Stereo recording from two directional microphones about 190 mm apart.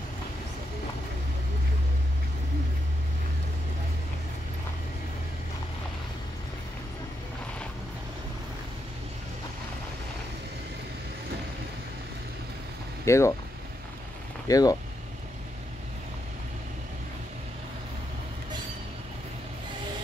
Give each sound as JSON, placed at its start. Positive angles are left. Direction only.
{"t": 13.0, "sound": "speech", "side_deg": 15}
{"t": 14.5, "sound": "speech", "side_deg": 20}